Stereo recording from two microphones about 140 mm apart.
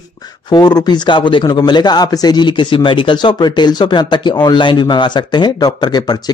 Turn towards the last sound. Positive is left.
turn(degrees=30)  # may be behind; listen again after turning